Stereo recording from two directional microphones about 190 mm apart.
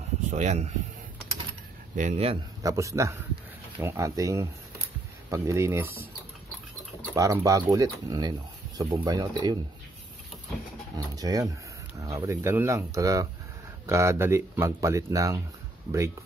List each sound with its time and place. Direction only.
0.3 s speech: 40° right (ahead or behind)
2.0 s speech: 35° right (ahead or behind)
2.6 s speech: 15° right (ahead or behind)
7.2 s speech: 15° right (ahead or behind)
11.0 s speech: 20° right (ahead or behind)